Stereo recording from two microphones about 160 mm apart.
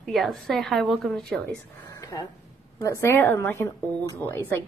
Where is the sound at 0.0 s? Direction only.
Centre (ahead or behind).